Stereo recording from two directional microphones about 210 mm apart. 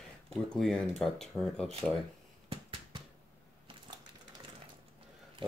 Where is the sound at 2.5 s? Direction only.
25° right (ahead or behind).